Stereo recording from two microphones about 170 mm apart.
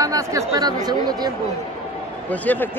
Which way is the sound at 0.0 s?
20° right (ahead or behind).